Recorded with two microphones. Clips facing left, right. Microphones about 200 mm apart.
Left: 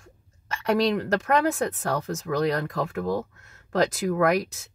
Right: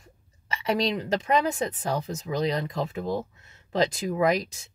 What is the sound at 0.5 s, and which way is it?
Speech, centre (ahead or behind).